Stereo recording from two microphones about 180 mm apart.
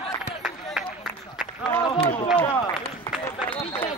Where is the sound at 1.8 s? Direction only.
25° left (ahead or behind).